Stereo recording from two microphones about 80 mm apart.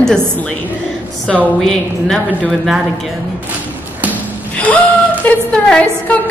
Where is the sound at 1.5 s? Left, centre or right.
Centre.